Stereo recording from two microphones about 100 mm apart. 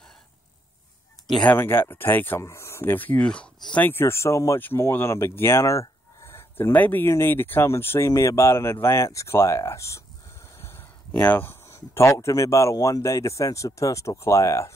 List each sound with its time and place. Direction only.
1.4 s speech: 20° left (ahead or behind)